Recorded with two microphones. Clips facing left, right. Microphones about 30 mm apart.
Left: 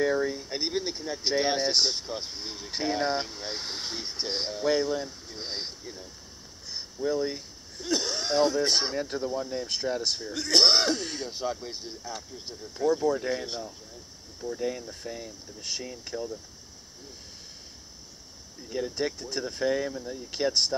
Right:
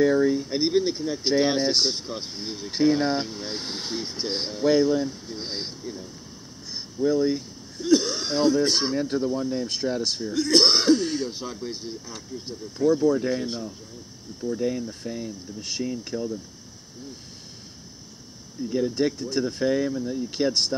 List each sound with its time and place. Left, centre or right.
0.0 s speech: centre
7.1 s speech: centre
9.0 s speech: centre
10.3 s speech: centre
10.6 s speech: centre
18.6 s speech: centre